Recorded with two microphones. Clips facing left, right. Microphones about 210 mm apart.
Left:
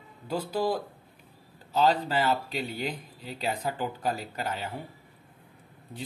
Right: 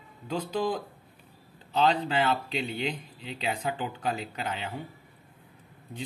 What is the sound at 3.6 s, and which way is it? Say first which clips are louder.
Speech: left 1 dB; 10° left (ahead or behind).